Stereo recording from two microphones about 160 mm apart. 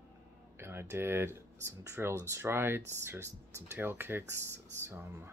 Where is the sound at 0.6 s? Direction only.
15° right (ahead or behind).